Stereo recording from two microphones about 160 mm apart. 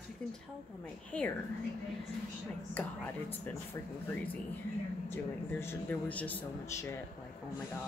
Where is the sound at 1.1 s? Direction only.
10° left (ahead or behind).